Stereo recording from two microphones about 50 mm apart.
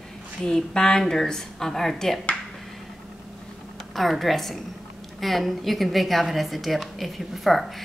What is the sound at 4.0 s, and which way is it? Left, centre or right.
A woman's voice, centre.